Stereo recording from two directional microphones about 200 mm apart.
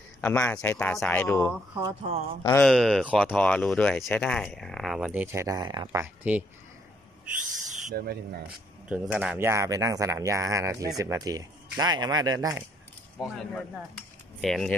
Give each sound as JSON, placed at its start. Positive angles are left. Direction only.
{"t": 0.2, "sound": "speech", "side_deg": 5}
{"t": 1.8, "sound": "speech", "side_deg": -20}
{"t": 2.6, "sound": "speech", "side_deg": 0}
{"t": 7.7, "sound": "speech", "side_deg": -50}
{"t": 8.8, "sound": "speech", "side_deg": -5}
{"t": 13.2, "sound": "cutlery", "side_deg": 0}